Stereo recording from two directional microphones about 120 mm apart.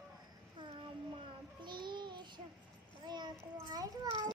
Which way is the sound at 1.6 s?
40° right (ahead or behind).